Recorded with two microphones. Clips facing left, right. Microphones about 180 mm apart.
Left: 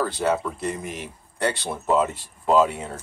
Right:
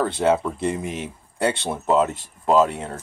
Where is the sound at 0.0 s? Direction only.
25° right (ahead or behind).